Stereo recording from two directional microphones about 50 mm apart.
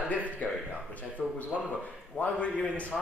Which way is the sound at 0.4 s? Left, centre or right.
Left.